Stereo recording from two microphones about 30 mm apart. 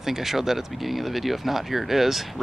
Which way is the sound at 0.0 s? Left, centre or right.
Centre.